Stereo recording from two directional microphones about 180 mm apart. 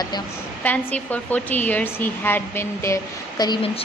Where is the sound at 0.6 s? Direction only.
10° left (ahead or behind).